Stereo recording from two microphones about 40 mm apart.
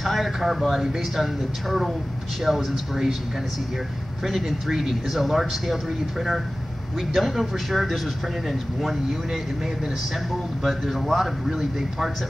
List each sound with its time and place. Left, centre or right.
0.0 s speech: centre
4.2 s speech: centre
10.6 s speech: centre